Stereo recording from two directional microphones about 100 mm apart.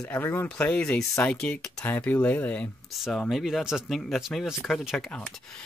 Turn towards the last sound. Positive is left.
turn(degrees=5)  # may be behind; listen again after turning